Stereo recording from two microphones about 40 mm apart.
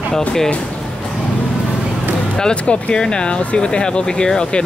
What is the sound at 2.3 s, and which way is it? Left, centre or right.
Speech, left.